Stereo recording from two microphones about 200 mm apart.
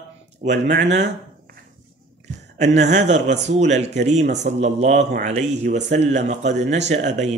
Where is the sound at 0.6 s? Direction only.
60° right (ahead or behind).